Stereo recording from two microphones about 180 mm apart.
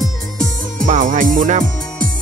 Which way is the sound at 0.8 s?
45° right (ahead or behind).